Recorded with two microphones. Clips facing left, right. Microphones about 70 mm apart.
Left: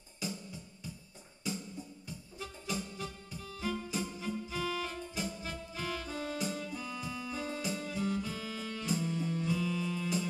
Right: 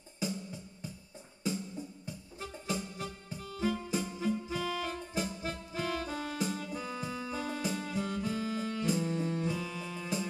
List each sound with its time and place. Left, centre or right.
2.3 s music: right
3.3 s music: right
3.6 s music: right
8.2 s music: right